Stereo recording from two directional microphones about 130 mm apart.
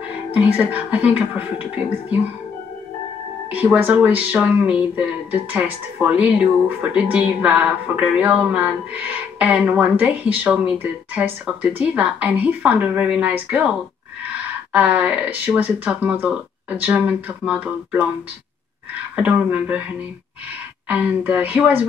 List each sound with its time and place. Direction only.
0.3 s speech: 10° right (ahead or behind)
3.4 s speech: 10° right (ahead or behind)
14.7 s speech: 10° right (ahead or behind)
19.1 s speech: 10° right (ahead or behind)
20.9 s speech: 10° right (ahead or behind)